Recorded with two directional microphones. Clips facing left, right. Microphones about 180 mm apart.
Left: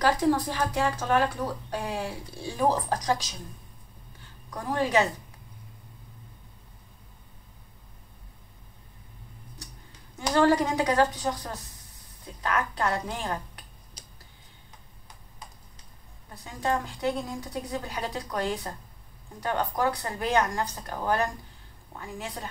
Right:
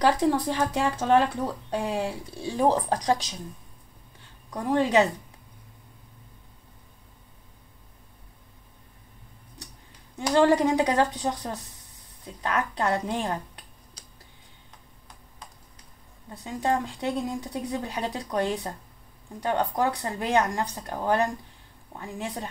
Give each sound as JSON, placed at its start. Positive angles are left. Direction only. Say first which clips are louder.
{"t": 0.0, "sound": "speech", "louder": "right 1 dB", "side_deg": -25}
{"t": 4.5, "sound": "speech", "louder": "right 4 dB", "side_deg": -20}
{"t": 10.1, "sound": "speech", "louder": "right 2 dB", "side_deg": -20}
{"t": 16.3, "sound": "speech", "louder": "right 2 dB", "side_deg": -25}